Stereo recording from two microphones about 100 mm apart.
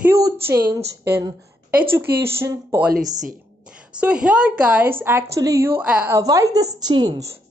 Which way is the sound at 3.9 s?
10° right (ahead or behind).